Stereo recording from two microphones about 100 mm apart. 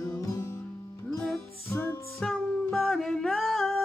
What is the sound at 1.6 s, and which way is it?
Music, 20° left (ahead or behind).